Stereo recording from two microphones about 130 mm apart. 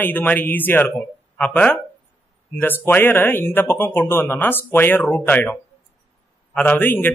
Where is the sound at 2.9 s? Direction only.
15° left (ahead or behind).